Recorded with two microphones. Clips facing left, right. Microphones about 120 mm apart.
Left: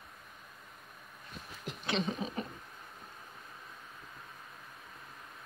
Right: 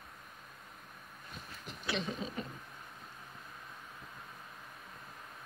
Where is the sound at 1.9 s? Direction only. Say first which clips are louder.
Left 3 dB; 20° left (ahead or behind).